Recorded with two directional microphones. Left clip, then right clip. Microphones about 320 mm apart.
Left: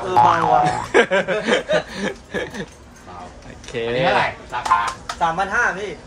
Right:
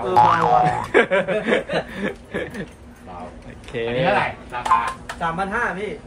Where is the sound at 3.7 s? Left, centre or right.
Centre.